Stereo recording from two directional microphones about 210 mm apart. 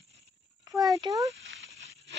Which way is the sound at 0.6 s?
15° right (ahead or behind).